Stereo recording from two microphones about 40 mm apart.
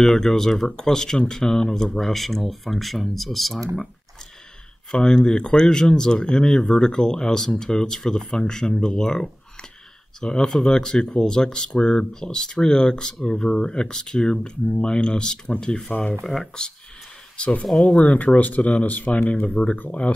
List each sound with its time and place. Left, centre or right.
0.0 s speech: centre
4.9 s speech: left
17.4 s speech: left